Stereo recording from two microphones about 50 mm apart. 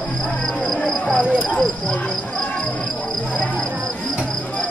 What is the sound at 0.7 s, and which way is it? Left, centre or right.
Cricket, centre.